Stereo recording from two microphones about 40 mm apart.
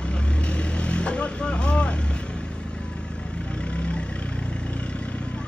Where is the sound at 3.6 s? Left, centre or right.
Left.